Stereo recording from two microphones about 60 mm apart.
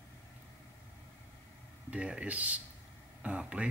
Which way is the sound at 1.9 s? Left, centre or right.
Centre.